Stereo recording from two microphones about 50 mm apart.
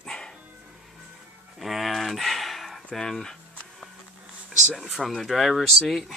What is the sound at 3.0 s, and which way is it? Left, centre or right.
Speech, centre.